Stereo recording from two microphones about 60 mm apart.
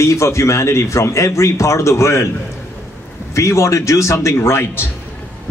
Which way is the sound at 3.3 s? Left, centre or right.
Left.